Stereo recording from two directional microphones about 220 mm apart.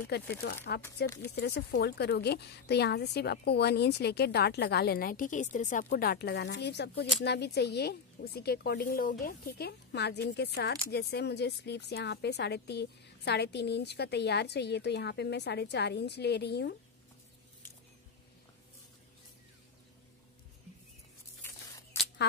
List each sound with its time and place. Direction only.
0.3 s a woman's voice: 45° left (ahead or behind)